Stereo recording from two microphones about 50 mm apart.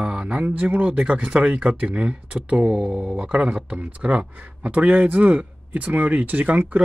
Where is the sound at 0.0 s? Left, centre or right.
Right.